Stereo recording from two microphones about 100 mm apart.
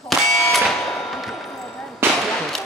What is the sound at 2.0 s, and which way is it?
Firecracker, 25° right (ahead or behind).